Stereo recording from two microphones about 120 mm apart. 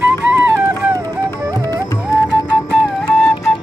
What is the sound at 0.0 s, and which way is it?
Music, 15° right (ahead or behind).